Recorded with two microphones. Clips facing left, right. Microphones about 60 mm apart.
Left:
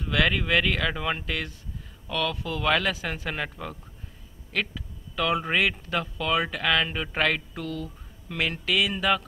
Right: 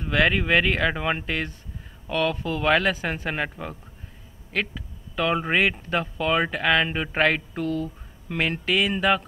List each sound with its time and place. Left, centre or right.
0.0 s speech: centre